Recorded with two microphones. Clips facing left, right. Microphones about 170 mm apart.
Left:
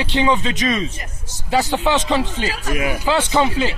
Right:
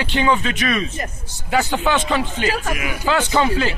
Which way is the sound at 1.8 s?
20° left (ahead or behind).